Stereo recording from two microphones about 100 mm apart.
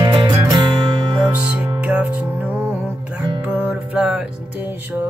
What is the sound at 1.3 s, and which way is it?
Music, 15° right (ahead or behind).